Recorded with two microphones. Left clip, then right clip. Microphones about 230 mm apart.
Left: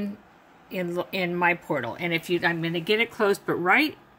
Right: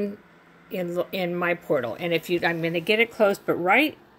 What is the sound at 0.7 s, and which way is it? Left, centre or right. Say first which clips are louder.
Speech: right 2 dB; centre.